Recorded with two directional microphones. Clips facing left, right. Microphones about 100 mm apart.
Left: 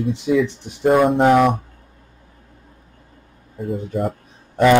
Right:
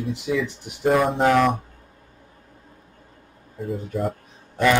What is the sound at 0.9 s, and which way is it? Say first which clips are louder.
Speech: left 5 dB; centre (ahead or behind).